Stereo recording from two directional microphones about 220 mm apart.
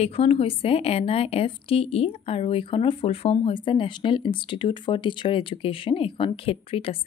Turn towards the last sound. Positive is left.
turn(degrees=25)  # may be behind; listen again after turning